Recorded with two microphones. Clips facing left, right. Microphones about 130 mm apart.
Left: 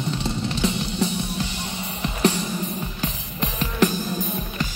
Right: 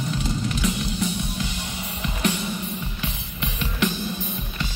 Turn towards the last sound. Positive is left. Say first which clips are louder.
# left 4 dB
turn(degrees=40)  # may be behind; listen again after turning